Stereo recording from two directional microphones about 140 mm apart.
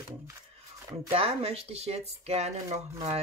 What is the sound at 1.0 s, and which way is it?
Speech, 45° right (ahead or behind).